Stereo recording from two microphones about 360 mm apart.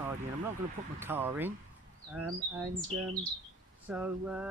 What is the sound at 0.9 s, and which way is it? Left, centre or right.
Speech, centre.